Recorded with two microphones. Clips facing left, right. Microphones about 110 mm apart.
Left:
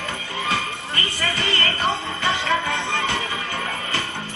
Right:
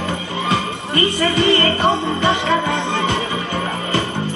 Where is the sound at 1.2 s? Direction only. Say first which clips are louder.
Right 9 dB; 20° right (ahead or behind).